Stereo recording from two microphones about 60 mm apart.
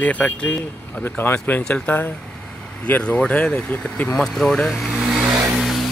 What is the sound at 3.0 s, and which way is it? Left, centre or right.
Speech, centre.